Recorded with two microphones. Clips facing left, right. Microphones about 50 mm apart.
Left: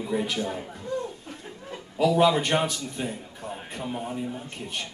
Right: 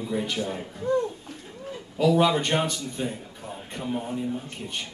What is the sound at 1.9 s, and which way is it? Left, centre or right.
A man's voice, centre.